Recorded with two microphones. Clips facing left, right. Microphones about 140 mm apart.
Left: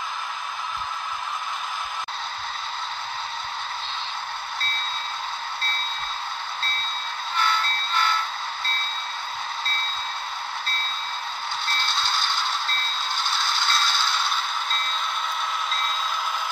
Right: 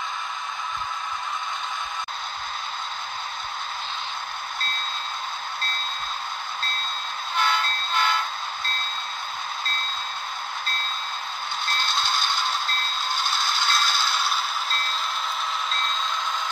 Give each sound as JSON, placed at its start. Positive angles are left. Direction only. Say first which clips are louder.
{"t": 7.3, "sound": "vehicle", "louder": "right 1 dB", "side_deg": -15}
{"t": 11.6, "sound": "music", "louder": "right 2 dB", "side_deg": -15}
{"t": 13.1, "sound": "scrape", "louder": "even", "side_deg": -15}